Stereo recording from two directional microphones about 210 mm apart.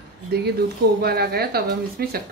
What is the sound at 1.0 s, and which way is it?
A woman's voice, 50° right (ahead or behind).